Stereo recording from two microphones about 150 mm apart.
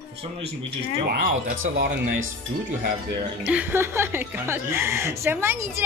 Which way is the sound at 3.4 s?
15° right (ahead or behind).